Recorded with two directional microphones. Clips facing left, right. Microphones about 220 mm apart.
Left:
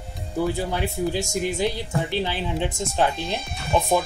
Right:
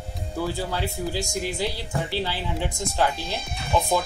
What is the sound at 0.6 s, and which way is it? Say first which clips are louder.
Speech: left 3 dB; 20° left (ahead or behind).